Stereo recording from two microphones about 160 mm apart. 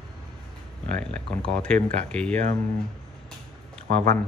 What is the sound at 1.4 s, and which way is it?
Speech, 5° left (ahead or behind).